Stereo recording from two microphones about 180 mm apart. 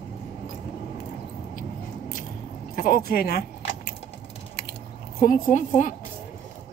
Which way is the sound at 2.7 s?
50° left (ahead or behind).